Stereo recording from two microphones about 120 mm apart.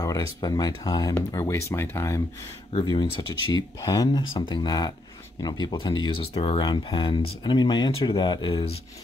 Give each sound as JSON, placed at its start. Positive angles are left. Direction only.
{"t": 0.0, "sound": "speech", "side_deg": 30}
{"t": 2.8, "sound": "speech", "side_deg": 40}
{"t": 6.6, "sound": "speech", "side_deg": 40}